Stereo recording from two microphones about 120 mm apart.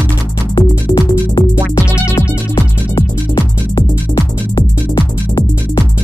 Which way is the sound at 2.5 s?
35° left (ahead or behind).